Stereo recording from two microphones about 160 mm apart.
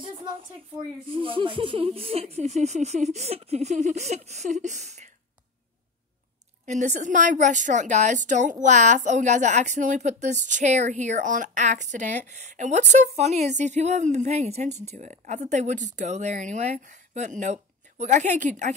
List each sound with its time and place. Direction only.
1.1 s a woman's voice: 35° right (ahead or behind)
6.6 s a woman's voice: 50° right (ahead or behind)